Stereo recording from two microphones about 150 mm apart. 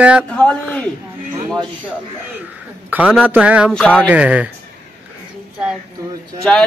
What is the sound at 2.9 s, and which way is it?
A man's voice, 10° right (ahead or behind).